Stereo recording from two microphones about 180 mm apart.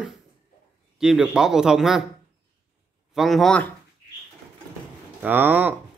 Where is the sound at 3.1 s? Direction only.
Centre (ahead or behind).